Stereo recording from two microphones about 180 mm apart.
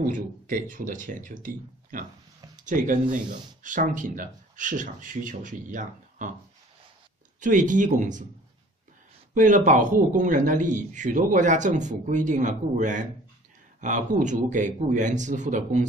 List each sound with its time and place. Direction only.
0.0 s a man's voice: 50° right (ahead or behind)
7.3 s a man's voice: 45° right (ahead or behind)
9.3 s a man's voice: 45° right (ahead or behind)